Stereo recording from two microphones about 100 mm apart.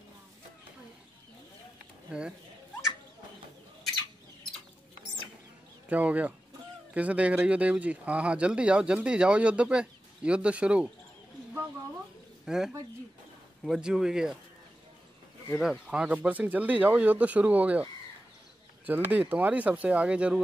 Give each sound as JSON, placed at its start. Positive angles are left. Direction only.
{"t": 2.1, "sound": "speech", "side_deg": -10}
{"t": 5.9, "sound": "speech", "side_deg": -15}
{"t": 12.4, "sound": "speech", "side_deg": -5}
{"t": 15.6, "sound": "speech", "side_deg": -5}
{"t": 18.9, "sound": "speech", "side_deg": -20}